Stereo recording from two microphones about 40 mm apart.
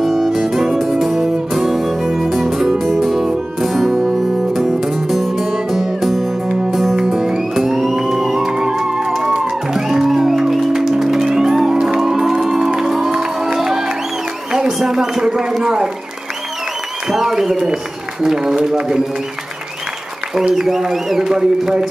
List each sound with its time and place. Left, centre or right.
0.0 s music: centre
7.1 s music: centre
14.7 s a sound: centre
17.1 s a sound: centre
18.2 s a man's voice: centre
20.4 s a man's voice: centre